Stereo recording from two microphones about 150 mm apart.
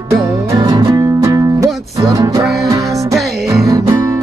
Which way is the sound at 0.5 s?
25° right (ahead or behind).